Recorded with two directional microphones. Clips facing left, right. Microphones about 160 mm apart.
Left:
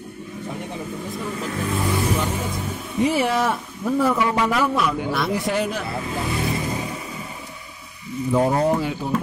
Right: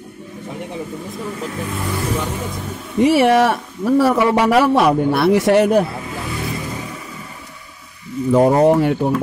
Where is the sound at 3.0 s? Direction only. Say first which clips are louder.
Right 7 dB; 70° right (ahead or behind).